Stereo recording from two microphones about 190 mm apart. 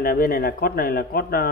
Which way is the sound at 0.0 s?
50° left (ahead or behind).